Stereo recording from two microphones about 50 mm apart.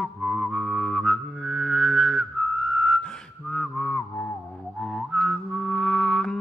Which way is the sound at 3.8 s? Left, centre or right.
Left.